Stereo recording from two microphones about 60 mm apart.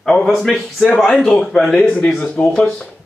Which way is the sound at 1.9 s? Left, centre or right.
Centre.